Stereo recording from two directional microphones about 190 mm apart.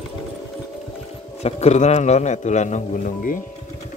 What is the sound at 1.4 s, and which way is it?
Speech, 35° left (ahead or behind).